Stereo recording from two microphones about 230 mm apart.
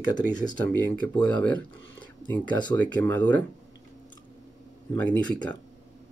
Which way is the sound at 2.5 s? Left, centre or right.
Centre.